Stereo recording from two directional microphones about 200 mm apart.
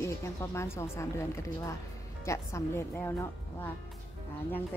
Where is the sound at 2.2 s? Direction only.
15° left (ahead or behind).